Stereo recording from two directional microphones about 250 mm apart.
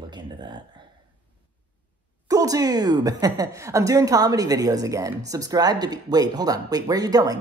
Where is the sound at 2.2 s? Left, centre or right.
Centre.